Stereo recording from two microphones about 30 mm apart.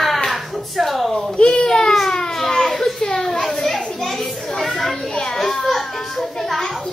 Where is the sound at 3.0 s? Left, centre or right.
Centre.